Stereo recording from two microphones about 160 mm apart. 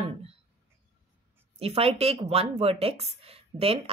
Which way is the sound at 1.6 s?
40° right (ahead or behind).